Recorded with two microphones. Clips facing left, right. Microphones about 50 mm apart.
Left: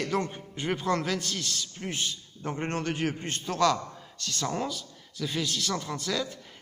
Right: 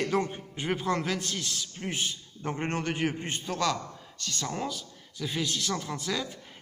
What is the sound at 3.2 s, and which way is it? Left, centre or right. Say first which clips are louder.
Speech: even; centre.